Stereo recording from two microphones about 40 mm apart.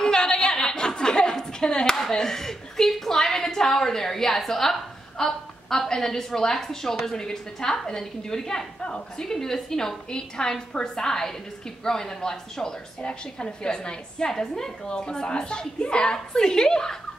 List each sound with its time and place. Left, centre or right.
0.0 s chuckle: centre
2.0 s a woman's voice: centre
9.3 s a woman's voice: centre